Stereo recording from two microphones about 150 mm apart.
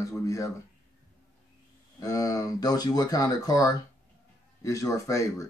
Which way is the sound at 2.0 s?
25° left (ahead or behind).